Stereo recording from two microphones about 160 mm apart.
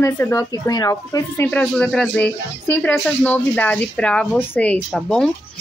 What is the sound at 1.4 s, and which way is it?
A woman's voice, 5° left (ahead or behind).